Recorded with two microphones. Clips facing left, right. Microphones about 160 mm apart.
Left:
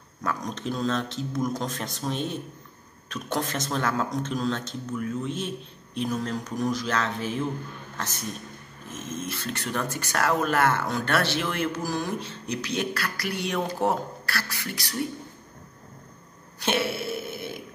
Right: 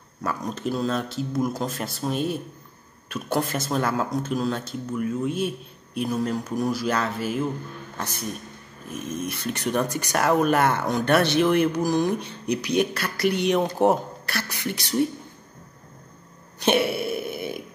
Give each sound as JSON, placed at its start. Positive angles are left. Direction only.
{"t": 0.2, "sound": "speech", "side_deg": -5}
{"t": 8.9, "sound": "speech", "side_deg": -15}
{"t": 16.5, "sound": "a sound", "side_deg": -15}